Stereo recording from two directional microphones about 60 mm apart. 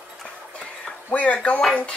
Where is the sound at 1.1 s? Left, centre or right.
Left.